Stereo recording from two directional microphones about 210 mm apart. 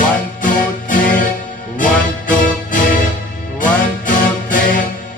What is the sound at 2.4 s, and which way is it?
Music, 40° left (ahead or behind).